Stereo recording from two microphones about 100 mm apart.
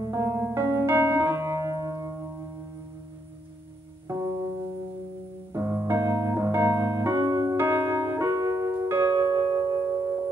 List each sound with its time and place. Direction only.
0.0 s piano: 35° right (ahead or behind)
4.1 s music: 30° right (ahead or behind)
5.5 s piano: 30° right (ahead or behind)
7.5 s music: 25° right (ahead or behind)